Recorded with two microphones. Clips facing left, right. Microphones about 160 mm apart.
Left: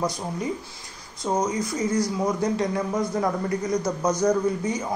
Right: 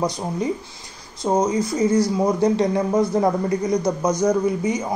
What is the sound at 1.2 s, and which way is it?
Speech, 25° right (ahead or behind).